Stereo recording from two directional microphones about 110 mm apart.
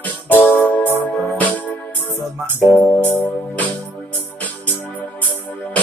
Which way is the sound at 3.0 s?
15° left (ahead or behind).